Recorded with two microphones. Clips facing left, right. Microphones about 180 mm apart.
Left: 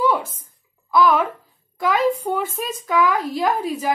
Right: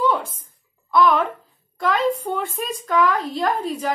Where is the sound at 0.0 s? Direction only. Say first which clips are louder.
Left 1 dB; 5° left (ahead or behind).